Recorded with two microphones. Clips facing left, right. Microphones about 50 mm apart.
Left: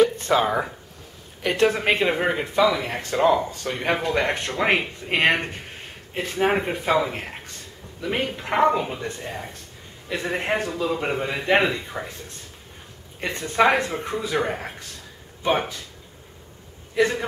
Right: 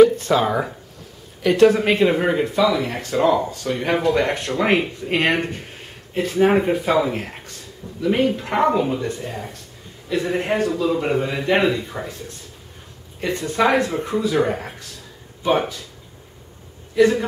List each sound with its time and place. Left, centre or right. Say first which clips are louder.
0.2 s speech: right 2 dB; centre
17.0 s speech: right 5 dB; centre